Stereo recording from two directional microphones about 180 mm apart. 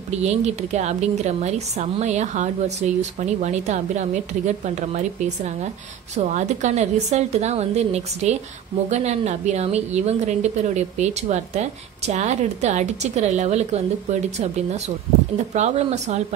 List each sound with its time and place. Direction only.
0.1 s a woman's voice: 40° right (ahead or behind)
15.3 s a woman's voice: 40° right (ahead or behind)